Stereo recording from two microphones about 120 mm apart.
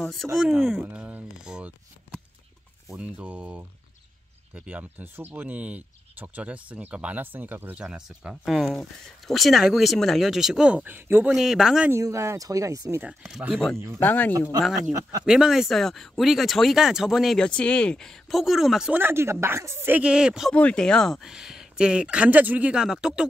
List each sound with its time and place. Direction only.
0.0 s speech: centre (ahead or behind)
2.9 s speech: 10° right (ahead or behind)
11.3 s speech: 5° right (ahead or behind)
11.9 s speech: 25° right (ahead or behind)
13.9 s speech: 15° left (ahead or behind)
14.8 s speech: 30° right (ahead or behind)
15.2 s speech: 5° right (ahead or behind)
18.9 s speech: 20° right (ahead or behind)
20.5 s speech: 10° left (ahead or behind); by 23.2 s 5° right (ahead or behind)